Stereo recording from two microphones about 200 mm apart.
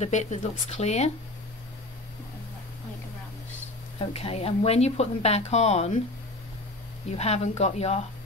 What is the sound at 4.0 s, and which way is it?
A woman's voice, 30° left (ahead or behind).